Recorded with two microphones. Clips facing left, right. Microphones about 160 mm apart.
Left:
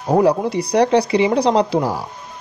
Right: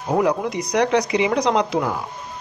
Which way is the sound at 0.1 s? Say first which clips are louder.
Left 5 dB; 30° left (ahead or behind).